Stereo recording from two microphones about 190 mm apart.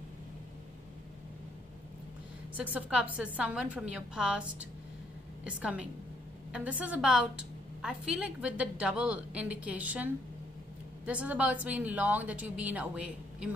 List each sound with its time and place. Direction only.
2.5 s a woman's voice: 5° right (ahead or behind)
11.1 s a woman's voice: 5° right (ahead or behind)